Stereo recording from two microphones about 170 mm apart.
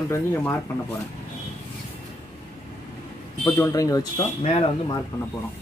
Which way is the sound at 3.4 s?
15° left (ahead or behind).